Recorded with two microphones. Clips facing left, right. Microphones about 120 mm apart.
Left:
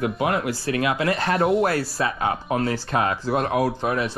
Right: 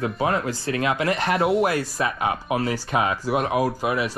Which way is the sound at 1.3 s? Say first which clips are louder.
Even; centre (ahead or behind).